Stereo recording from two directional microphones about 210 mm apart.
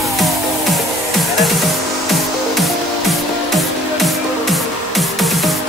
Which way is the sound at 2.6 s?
Centre (ahead or behind).